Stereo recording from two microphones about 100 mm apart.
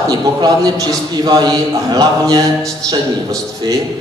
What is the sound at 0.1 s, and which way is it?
A man's voice, 40° right (ahead or behind).